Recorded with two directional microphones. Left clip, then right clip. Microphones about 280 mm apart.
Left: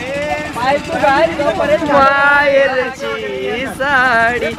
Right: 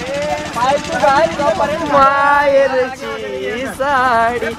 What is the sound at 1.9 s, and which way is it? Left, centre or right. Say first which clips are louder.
Speech: right 1 dB; right.